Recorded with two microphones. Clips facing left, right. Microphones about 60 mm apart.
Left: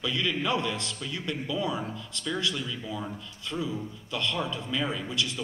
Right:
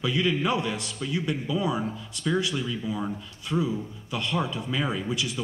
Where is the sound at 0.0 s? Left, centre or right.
Centre.